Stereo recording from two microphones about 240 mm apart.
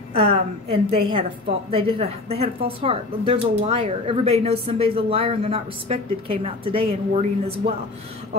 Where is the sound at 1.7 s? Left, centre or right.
Right.